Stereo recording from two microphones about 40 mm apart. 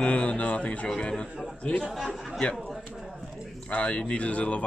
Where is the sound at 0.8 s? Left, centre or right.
Left.